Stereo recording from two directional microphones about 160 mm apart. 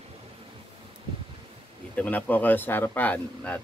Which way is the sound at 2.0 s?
10° left (ahead or behind).